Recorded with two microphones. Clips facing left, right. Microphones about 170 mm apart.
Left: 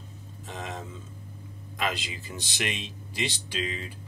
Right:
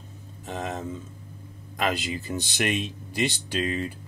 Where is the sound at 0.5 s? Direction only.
45° right (ahead or behind).